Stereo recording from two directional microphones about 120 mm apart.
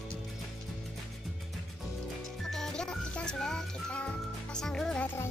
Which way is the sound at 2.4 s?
5° left (ahead or behind).